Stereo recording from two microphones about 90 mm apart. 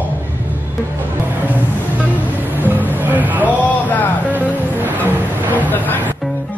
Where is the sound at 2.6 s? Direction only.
20° right (ahead or behind).